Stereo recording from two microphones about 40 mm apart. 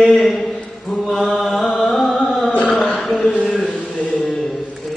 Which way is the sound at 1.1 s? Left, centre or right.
Left.